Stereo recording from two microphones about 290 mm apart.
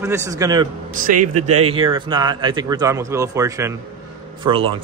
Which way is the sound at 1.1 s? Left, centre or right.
Right.